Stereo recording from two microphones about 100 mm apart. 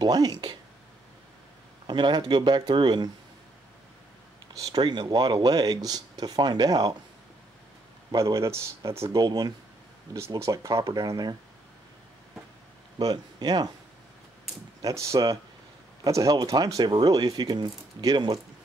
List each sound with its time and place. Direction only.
0.0 s speech: 40° right (ahead or behind)
1.9 s speech: 50° right (ahead or behind)
4.6 s speech: 40° right (ahead or behind)
8.2 s speech: 30° right (ahead or behind)
9.2 s speech: 40° right (ahead or behind)
10.1 s speech: 30° right (ahead or behind)
13.0 s speech: 40° right (ahead or behind)
14.8 s speech: 30° right (ahead or behind)